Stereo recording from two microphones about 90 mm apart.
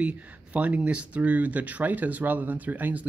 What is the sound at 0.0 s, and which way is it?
Speech, 15° right (ahead or behind).